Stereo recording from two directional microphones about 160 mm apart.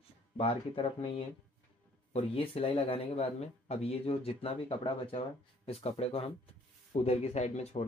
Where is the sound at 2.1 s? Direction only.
35° left (ahead or behind).